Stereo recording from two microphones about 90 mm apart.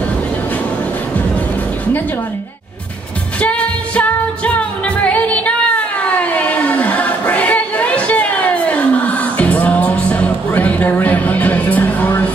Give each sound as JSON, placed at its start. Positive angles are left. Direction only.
{"t": 3.3, "sound": "music", "side_deg": 15}
{"t": 6.0, "sound": "choir", "side_deg": 15}